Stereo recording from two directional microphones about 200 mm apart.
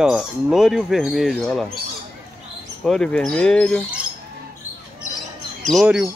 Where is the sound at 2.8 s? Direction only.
5° left (ahead or behind).